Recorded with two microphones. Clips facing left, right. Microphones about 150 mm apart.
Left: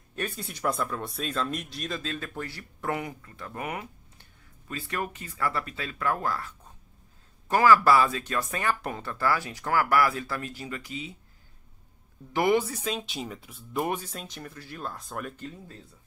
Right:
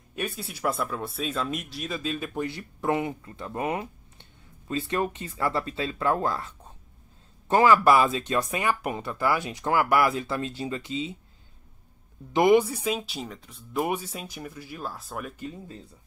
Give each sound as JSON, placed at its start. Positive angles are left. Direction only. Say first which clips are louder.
{"t": 0.3, "sound": "speech", "louder": "even", "side_deg": -5}
{"t": 12.3, "sound": "speech", "louder": "right 5 dB", "side_deg": -20}
{"t": 13.8, "sound": "speech", "louder": "right 2 dB", "side_deg": -5}